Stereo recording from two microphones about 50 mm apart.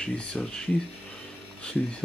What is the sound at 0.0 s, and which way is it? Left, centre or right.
Speech, centre.